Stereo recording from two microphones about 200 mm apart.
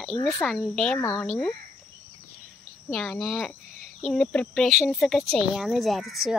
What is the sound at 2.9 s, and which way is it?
Speech, centre (ahead or behind).